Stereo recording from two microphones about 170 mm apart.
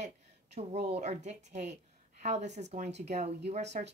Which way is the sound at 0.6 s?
40° right (ahead or behind).